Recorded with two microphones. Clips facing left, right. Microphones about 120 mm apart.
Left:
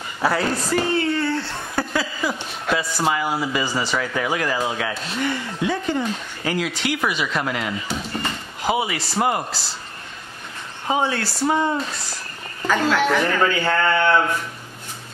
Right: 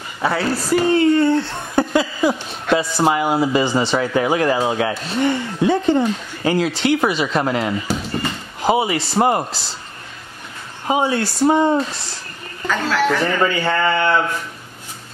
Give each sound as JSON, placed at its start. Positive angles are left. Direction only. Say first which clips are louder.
{"t": 0.2, "sound": "speech", "louder": "right 1 dB", "side_deg": 0}
{"t": 0.9, "sound": "speech", "louder": "right 7 dB", "side_deg": -20}
{"t": 10.9, "sound": "speech", "louder": "right 4 dB", "side_deg": -15}
{"t": 13.1, "sound": "speech", "louder": "right 1 dB", "side_deg": 0}